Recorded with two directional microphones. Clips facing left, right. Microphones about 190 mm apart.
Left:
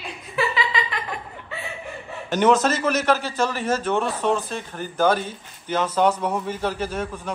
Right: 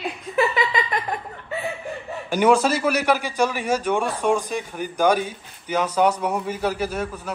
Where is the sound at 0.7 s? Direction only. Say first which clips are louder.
Right 3 dB; 45° right (ahead or behind).